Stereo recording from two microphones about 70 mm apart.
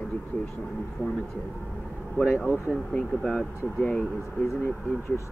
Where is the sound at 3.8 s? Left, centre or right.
Centre.